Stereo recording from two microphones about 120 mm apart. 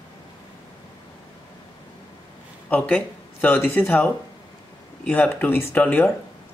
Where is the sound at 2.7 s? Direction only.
10° left (ahead or behind).